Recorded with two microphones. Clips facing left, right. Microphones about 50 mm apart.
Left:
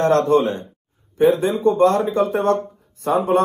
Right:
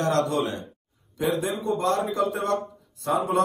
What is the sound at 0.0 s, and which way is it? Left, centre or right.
Speech, left.